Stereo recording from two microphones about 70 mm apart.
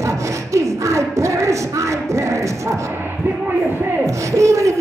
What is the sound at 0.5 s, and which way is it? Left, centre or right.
Speech, right.